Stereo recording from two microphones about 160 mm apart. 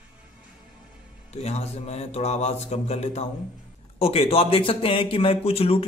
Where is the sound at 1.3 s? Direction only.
40° left (ahead or behind).